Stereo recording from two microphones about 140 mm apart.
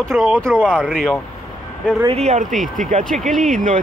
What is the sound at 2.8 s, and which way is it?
Speech, 65° right (ahead or behind).